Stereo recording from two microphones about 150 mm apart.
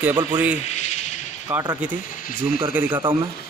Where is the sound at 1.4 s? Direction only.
25° right (ahead or behind).